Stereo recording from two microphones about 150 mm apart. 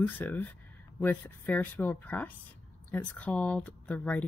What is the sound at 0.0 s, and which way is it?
Speech, 15° left (ahead or behind).